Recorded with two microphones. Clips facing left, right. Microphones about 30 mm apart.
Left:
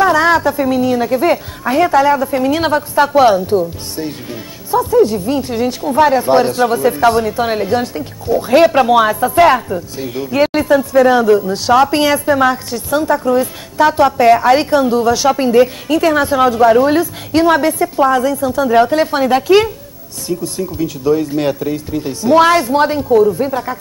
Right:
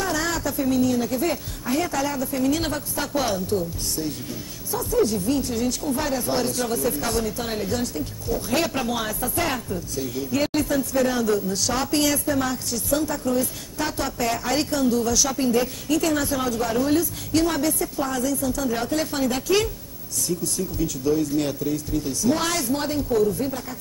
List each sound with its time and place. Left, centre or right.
0.0 s speech: left